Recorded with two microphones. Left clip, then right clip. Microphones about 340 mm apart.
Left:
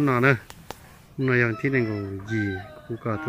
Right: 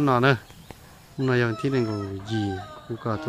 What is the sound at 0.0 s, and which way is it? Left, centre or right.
Speech, centre.